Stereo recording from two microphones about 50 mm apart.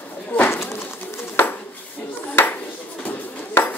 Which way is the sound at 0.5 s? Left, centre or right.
Left.